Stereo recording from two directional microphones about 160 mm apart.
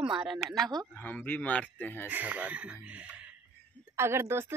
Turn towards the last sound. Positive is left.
turn(degrees=-15)  # may be behind; listen again after turning